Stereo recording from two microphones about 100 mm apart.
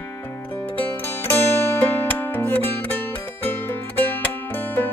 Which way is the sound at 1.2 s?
20° left (ahead or behind).